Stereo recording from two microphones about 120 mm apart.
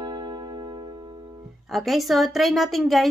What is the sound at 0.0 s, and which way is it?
Music, 40° right (ahead or behind).